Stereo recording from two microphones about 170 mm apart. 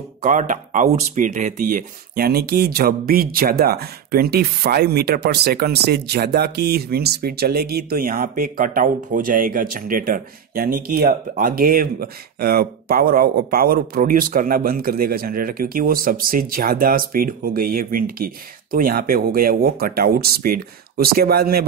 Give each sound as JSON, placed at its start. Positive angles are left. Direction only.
{"t": 0.2, "sound": "speech", "side_deg": -50}